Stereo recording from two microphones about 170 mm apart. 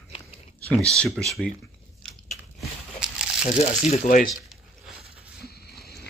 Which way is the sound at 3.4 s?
40° left (ahead or behind).